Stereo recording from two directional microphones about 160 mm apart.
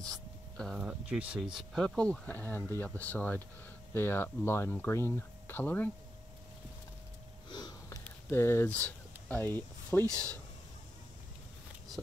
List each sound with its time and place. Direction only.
0.6 s speech: centre (ahead or behind)
7.4 s sniff: 25° left (ahead or behind)
8.3 s speech: 15° left (ahead or behind)